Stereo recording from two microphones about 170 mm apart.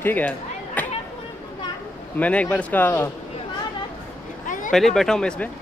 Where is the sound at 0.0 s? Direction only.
10° left (ahead or behind).